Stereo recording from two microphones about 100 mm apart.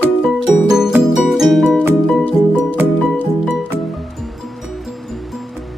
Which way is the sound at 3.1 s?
15° left (ahead or behind).